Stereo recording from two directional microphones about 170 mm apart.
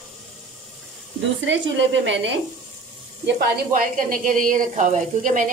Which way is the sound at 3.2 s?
70° right (ahead or behind).